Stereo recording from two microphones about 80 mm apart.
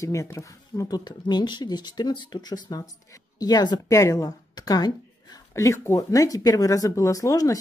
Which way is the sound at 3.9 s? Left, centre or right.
Left.